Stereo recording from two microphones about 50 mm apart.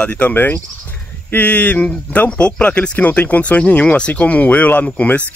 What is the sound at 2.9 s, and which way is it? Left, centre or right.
Speech, left.